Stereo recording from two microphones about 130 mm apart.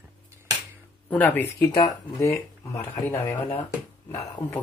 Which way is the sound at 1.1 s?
10° left (ahead or behind).